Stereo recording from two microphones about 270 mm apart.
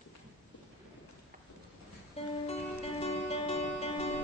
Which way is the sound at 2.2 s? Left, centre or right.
Left.